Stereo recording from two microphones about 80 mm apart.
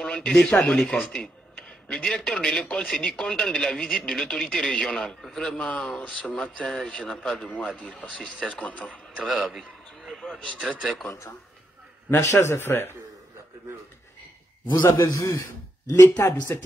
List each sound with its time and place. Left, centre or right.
0.0 s a man's voice: centre
9.3 s a sound: centre
10.4 s a man's voice: centre
12.1 s speech: left
14.8 s a man's voice: left